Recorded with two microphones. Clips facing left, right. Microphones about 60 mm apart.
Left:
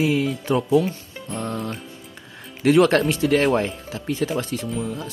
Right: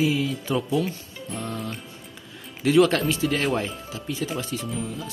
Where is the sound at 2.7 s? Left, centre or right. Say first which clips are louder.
Left 3 dB; left.